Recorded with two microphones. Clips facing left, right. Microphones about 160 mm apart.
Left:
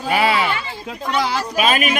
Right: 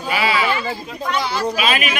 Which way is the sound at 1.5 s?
45° left (ahead or behind).